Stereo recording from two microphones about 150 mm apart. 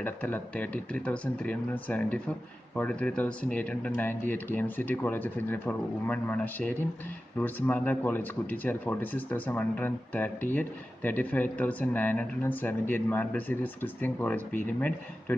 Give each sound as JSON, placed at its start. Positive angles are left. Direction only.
{"t": 0.0, "sound": "speech", "side_deg": 10}